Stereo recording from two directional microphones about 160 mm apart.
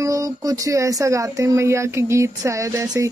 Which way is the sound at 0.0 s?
20° right (ahead or behind).